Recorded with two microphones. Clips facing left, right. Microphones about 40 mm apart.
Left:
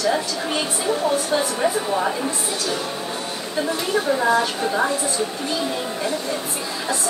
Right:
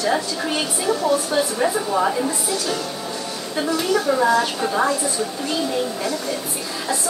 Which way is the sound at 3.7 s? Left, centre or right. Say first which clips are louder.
Right 3 dB; left.